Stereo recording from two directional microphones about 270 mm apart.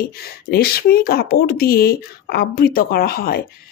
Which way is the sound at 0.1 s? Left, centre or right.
Left.